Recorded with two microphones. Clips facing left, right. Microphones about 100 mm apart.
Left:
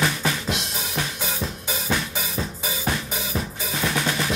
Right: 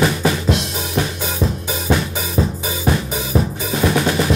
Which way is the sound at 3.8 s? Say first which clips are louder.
Right 8 dB; 45° right (ahead or behind).